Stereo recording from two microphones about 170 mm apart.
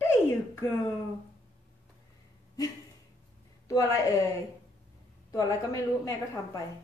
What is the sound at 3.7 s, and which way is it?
Speech, 20° left (ahead or behind).